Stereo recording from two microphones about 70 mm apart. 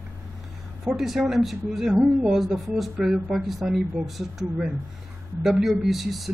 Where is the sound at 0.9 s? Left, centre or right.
Centre.